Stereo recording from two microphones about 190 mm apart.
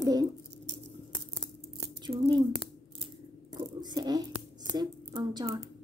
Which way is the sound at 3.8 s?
20° right (ahead or behind).